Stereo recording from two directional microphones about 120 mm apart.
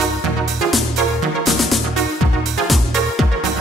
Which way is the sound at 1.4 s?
Centre (ahead or behind).